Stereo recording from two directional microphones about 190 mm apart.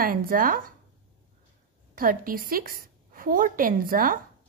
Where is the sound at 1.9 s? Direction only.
45° right (ahead or behind).